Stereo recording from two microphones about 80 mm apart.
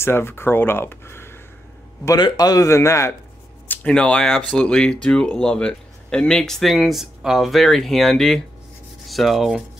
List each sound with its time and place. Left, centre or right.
0.0 s speech: left
2.1 s a man's voice: left
3.6 s a sound: left
3.9 s speech: centre
9.0 s rub: centre